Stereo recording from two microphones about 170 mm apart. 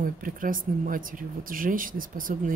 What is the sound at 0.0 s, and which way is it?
Speech, 55° right (ahead or behind).